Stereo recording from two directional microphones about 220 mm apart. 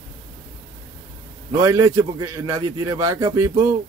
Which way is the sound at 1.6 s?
15° right (ahead or behind).